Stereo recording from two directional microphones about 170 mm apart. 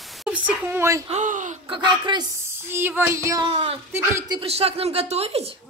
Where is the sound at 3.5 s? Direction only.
35° right (ahead or behind).